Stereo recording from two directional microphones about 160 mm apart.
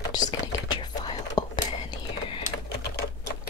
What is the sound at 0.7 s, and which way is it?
Whispering, 25° left (ahead or behind).